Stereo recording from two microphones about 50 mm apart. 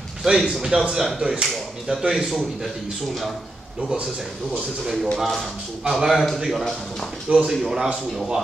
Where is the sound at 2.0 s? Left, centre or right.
Centre.